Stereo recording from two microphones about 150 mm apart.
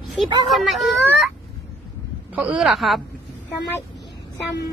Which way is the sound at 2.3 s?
10° right (ahead or behind).